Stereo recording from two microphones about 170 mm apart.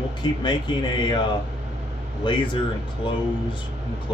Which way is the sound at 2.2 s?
30° left (ahead or behind).